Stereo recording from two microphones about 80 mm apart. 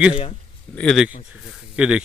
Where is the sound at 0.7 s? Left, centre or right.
Centre.